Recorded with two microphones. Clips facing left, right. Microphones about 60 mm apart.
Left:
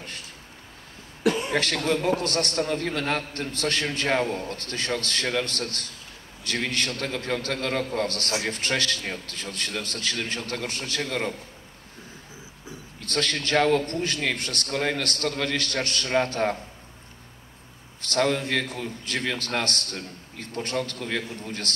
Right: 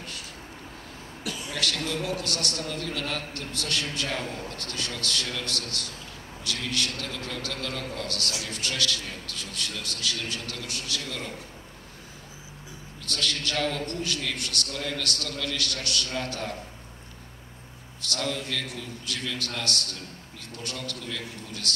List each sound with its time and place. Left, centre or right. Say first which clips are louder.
1.2 s a man's voice: left 8 dB; left
13.0 s a man's voice: left 3 dB; left
18.0 s a man's voice: left 7 dB; left